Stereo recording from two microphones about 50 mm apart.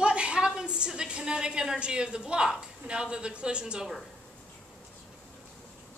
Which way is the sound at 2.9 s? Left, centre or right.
Centre.